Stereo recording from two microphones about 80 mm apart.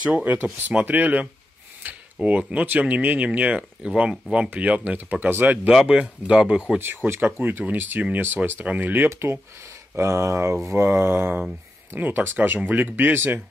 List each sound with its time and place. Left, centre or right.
0.0 s speech: centre
5.7 s speech: centre
6.8 s speech: right